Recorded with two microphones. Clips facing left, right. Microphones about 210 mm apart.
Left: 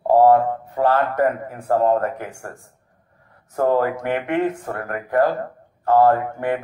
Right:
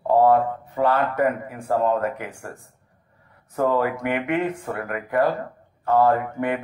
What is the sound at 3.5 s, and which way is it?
A man's voice, 40° left (ahead or behind).